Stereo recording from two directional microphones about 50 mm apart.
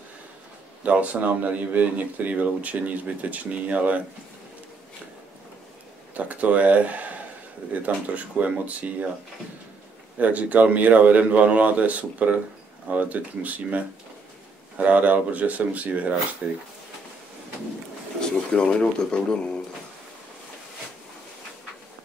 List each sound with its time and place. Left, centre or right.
0.8 s speech: right
6.1 s speech: right
10.1 s speech: right
18.5 s speech: centre